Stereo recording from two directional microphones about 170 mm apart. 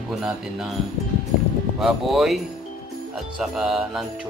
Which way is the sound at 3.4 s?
Centre (ahead or behind).